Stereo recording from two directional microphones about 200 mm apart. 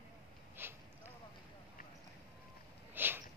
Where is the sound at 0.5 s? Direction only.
10° right (ahead or behind).